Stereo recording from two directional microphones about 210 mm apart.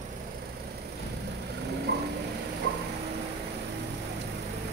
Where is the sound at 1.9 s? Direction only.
55° right (ahead or behind).